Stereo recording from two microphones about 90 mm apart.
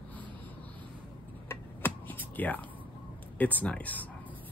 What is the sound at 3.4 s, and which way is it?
Speech, 20° left (ahead or behind).